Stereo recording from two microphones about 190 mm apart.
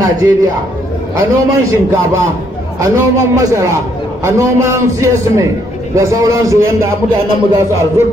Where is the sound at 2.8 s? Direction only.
15° right (ahead or behind).